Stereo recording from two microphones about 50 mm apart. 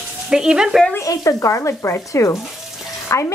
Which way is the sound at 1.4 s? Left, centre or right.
Left.